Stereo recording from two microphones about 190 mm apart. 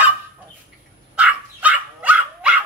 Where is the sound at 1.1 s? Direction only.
5° right (ahead or behind).